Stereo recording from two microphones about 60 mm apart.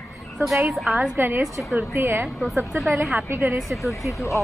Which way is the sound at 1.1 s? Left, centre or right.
Right.